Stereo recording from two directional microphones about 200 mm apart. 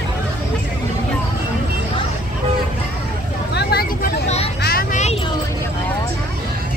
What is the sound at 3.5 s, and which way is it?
Vehicle, 55° left (ahead or behind).